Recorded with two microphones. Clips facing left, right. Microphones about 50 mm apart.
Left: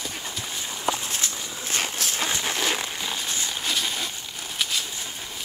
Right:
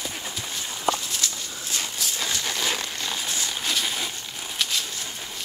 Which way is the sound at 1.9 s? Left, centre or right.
Left.